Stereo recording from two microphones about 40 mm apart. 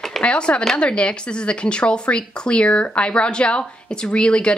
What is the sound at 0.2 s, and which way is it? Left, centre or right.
Speech, left.